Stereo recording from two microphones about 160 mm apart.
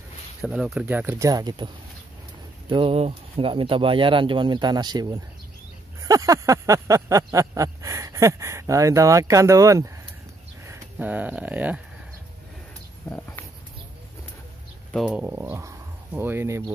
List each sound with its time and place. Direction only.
0.4 s speech: 5° right (ahead or behind); by 1.7 s 25° right (ahead or behind)
2.7 s speech: 35° right (ahead or behind)
5.9 s a sound: 20° right (ahead or behind)
10.6 s speech: 15° right (ahead or behind)
14.9 s speech: centre (ahead or behind)
15.2 s speech: 10° right (ahead or behind)